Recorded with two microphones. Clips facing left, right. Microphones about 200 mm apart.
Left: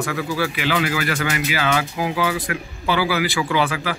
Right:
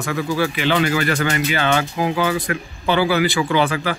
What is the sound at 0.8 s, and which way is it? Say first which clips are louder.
Speech: right 3 dB; 35° right (ahead or behind).